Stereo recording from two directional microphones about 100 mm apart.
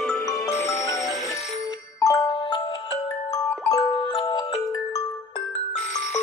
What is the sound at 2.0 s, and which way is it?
Music, 35° left (ahead or behind).